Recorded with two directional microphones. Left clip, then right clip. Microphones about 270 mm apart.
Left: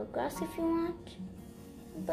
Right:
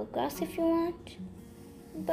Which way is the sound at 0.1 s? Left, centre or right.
Right.